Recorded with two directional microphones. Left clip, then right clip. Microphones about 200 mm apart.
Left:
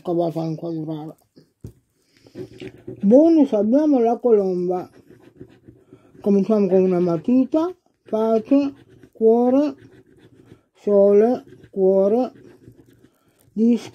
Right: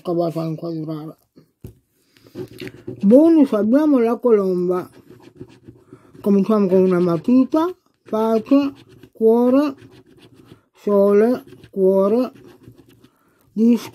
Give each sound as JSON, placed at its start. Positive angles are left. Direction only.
{"t": 0.0, "sound": "speech", "side_deg": -10}
{"t": 2.6, "sound": "speech", "side_deg": -20}
{"t": 4.3, "sound": "pant", "side_deg": -15}
{"t": 6.2, "sound": "speech", "side_deg": -15}
{"t": 13.6, "sound": "speech", "side_deg": -20}